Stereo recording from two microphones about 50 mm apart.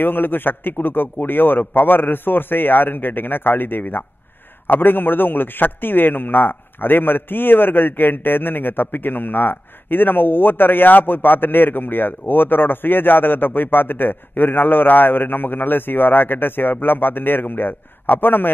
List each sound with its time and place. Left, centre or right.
0.0 s a man's voice: left